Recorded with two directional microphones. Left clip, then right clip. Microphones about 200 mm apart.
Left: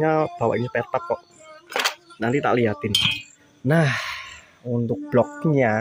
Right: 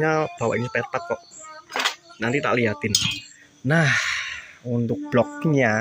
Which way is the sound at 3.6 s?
15° left (ahead or behind).